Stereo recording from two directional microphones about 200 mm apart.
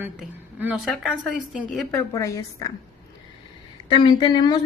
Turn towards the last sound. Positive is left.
turn(degrees=20)  # may be behind; listen again after turning